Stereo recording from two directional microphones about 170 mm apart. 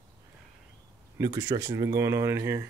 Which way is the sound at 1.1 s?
20° right (ahead or behind).